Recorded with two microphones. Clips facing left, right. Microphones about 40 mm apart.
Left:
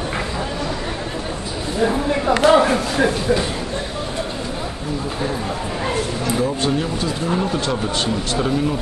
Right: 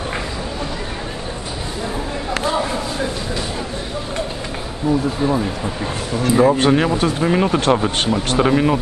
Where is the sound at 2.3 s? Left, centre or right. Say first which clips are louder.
Left 8 dB; left.